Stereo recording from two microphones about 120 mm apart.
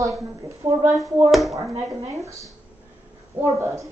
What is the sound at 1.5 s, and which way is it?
Speech, 25° right (ahead or behind).